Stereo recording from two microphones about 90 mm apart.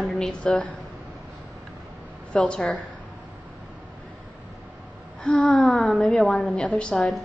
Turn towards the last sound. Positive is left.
turn(degrees=10)  # may be behind; listen again after turning